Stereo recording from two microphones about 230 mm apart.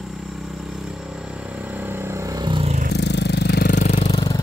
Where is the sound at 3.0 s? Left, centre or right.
Left.